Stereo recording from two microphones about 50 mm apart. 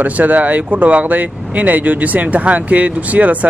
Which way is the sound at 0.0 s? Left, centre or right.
Right.